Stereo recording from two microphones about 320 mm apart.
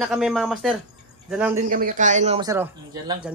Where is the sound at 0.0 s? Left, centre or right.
Centre.